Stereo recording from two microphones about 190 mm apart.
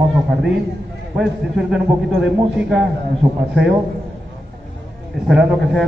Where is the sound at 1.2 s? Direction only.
Centre (ahead or behind).